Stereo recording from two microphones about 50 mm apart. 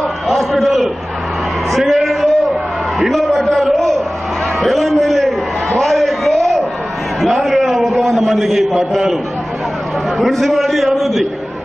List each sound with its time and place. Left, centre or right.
0.3 s a man's voice: centre
1.7 s a sound: centre
10.2 s a man's voice: centre